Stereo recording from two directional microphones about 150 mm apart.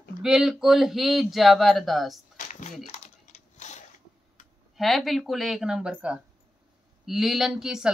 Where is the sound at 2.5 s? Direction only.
50° left (ahead or behind).